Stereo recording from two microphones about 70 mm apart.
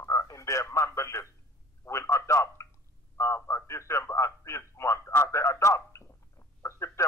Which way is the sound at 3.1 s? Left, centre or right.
Left.